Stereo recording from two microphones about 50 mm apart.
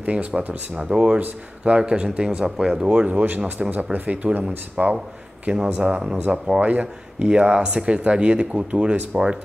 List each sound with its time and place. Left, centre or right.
0.0 s speech: right
0.7 s speech: right
6.6 s speech: right
7.2 s speech: centre